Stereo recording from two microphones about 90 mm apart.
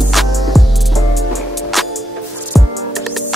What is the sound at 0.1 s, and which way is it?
Music, centre (ahead or behind).